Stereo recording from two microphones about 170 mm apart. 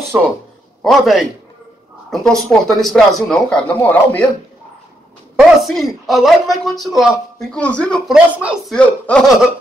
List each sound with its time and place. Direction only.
0.1 s speech: 10° right (ahead or behind); by 4.3 s 10° left (ahead or behind)
5.3 s speech: centre (ahead or behind)
8.4 s speech: 5° right (ahead or behind)
8.7 s speech: 5° left (ahead or behind)